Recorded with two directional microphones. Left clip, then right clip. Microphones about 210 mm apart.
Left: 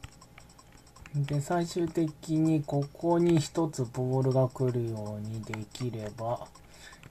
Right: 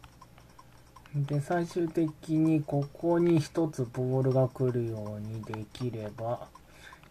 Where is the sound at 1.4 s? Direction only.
Centre (ahead or behind).